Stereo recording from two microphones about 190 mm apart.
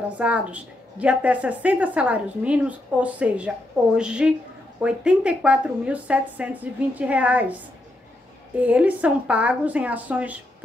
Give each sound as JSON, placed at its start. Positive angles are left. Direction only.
{"t": 0.2, "sound": "a woman's voice", "side_deg": -5}
{"t": 8.5, "sound": "a woman's voice", "side_deg": -5}